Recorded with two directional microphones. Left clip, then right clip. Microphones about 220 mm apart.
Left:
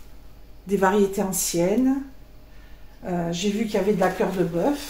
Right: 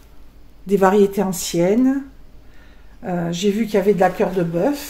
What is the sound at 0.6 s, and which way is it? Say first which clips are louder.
Speech: right 6 dB; 40° right (ahead or behind).